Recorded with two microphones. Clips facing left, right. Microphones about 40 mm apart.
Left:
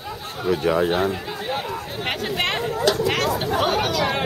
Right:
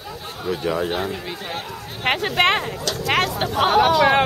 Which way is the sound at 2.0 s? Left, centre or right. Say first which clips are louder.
Right 7 dB; right.